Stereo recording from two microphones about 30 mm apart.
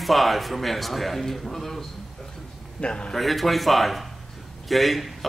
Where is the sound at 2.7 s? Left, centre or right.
Left.